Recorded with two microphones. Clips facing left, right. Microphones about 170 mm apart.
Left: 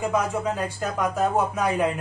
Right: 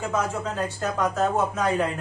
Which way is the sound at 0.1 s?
10° left (ahead or behind).